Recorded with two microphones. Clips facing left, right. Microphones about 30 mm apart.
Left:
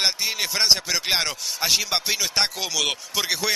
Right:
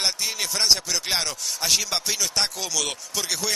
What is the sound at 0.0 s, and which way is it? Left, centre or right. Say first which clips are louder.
A man's voice: left 3 dB; centre.